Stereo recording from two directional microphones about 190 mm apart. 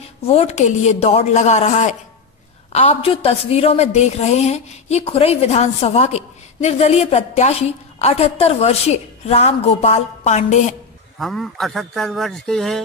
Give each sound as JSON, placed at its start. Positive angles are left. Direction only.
{"t": 0.3, "sound": "a woman's voice", "side_deg": 35}
{"t": 11.1, "sound": "a man's voice", "side_deg": 0}